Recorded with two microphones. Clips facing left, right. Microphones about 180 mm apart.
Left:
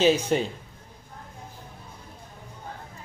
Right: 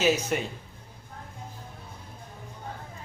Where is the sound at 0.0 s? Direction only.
30° left (ahead or behind).